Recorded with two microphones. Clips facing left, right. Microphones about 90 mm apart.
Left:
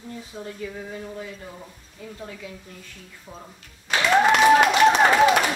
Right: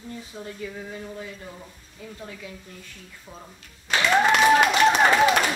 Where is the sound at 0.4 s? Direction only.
5° left (ahead or behind).